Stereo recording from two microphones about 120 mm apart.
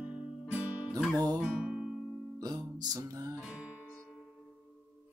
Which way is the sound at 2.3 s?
35° right (ahead or behind).